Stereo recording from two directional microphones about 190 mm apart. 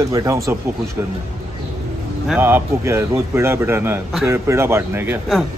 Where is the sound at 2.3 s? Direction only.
10° right (ahead or behind).